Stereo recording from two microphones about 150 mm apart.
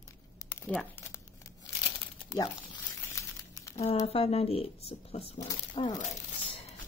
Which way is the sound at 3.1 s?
20° left (ahead or behind).